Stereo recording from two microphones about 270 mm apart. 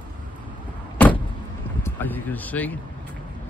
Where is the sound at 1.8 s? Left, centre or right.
Centre.